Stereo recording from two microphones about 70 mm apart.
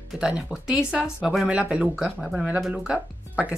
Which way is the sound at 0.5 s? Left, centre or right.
Centre.